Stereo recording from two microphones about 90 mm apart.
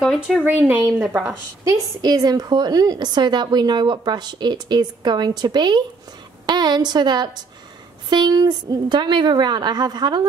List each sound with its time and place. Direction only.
0.0 s speech: centre (ahead or behind)
1.2 s a woman's voice: 40° right (ahead or behind)